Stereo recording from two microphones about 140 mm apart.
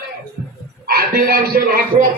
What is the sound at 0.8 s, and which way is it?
Speech, 90° right.